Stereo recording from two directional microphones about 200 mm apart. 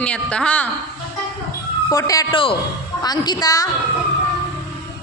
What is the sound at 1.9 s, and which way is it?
A man's voice, 15° left (ahead or behind).